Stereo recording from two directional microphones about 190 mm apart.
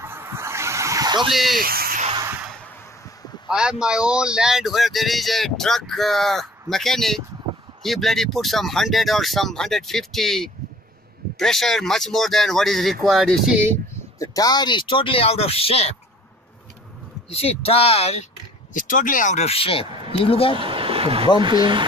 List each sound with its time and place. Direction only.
0.0 s a sound: 15° right (ahead or behind)
1.3 s speech: centre (ahead or behind)
1.6 s a sound: 50° right (ahead or behind)
3.4 s speech: 5° right (ahead or behind)
14.1 s speech: 20° left (ahead or behind)
17.3 s speech: 30° left (ahead or behind)
18.7 s speech: 45° left (ahead or behind)
20.5 s a sound: 30° right (ahead or behind)
21.4 s speech: 25° right (ahead or behind)